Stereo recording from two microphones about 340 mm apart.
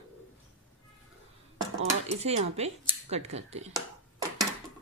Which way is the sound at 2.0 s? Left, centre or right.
Centre.